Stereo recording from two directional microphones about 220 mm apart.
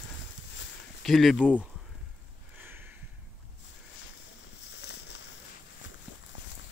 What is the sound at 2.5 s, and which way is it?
Sniff, 10° right (ahead or behind).